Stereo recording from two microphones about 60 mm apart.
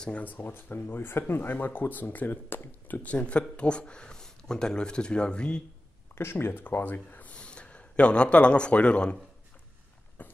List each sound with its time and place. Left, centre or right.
0.0 s speech: left
3.0 s speech: left
6.1 s speech: left; by 9.1 s centre